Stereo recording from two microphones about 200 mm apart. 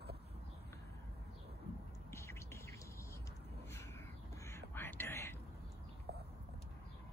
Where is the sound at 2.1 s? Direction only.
15° left (ahead or behind).